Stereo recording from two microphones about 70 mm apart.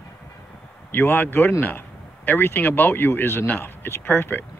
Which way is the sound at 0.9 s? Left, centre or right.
Left.